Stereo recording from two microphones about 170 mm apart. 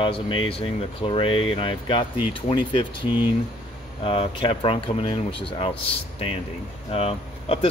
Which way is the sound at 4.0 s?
30° left (ahead or behind).